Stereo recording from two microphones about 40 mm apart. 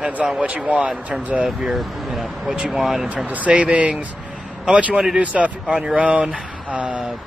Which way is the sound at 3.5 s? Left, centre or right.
Right.